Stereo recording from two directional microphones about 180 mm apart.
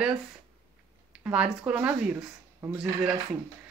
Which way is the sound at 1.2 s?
5° right (ahead or behind).